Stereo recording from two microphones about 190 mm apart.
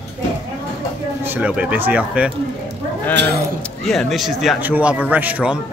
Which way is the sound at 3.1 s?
60° right (ahead or behind).